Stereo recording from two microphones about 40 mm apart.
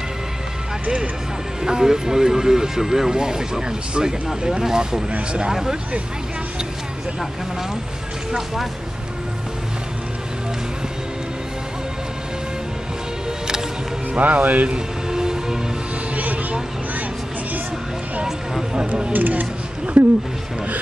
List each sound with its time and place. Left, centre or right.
1.6 s speech: centre
5.1 s speech: right
5.5 s speech: centre
8.3 s speech: centre
14.1 s speech: right
15.0 s music: centre
19.1 s speech: right
20.0 s speech: right